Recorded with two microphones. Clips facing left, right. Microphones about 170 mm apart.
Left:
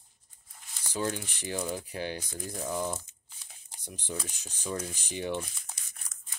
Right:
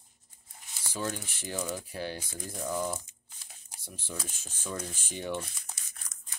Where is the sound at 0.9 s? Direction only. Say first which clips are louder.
Left 3 dB; 15° left (ahead or behind).